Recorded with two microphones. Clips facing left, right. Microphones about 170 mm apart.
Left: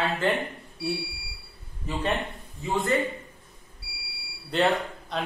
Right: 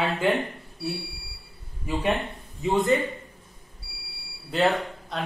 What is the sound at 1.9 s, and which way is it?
Speech, 10° right (ahead or behind).